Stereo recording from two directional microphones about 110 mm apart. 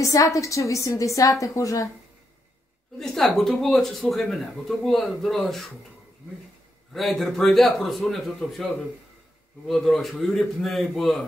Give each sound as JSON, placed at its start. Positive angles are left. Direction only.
{"t": 0.0, "sound": "a woman's voice", "side_deg": 30}
{"t": 3.0, "sound": "speech", "side_deg": 0}
{"t": 6.9, "sound": "speech", "side_deg": 0}